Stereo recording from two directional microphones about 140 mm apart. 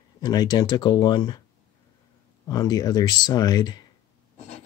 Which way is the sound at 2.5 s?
25° left (ahead or behind).